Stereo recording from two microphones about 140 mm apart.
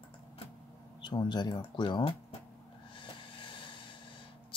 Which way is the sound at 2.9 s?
35° left (ahead or behind).